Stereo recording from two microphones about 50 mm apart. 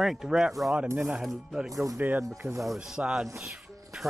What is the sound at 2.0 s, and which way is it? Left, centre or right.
Speech, right.